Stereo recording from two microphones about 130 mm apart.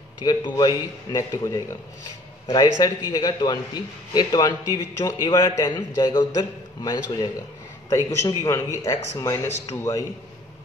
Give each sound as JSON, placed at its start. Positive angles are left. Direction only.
{"t": 0.2, "sound": "a man's voice", "side_deg": 30}